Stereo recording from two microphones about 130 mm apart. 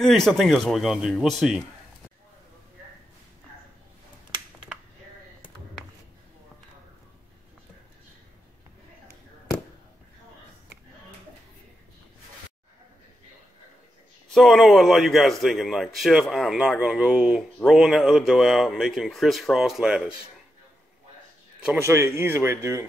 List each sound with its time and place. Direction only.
0.0 s a man's voice: centre (ahead or behind)
14.3 s a man's voice: centre (ahead or behind)
21.7 s speech: 20° right (ahead or behind)